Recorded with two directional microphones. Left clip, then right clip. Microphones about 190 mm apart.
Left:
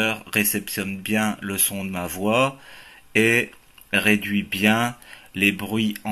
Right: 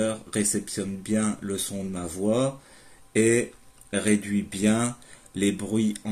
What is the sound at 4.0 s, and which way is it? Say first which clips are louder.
Speech: left 4 dB; 90° left.